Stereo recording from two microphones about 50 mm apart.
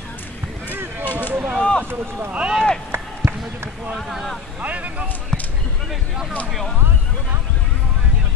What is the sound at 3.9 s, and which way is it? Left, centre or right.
Speech, centre.